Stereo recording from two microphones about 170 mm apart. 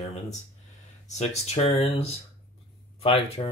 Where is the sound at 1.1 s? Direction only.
40° left (ahead or behind).